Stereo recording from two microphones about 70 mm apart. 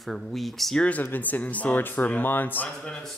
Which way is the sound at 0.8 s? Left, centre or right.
Left.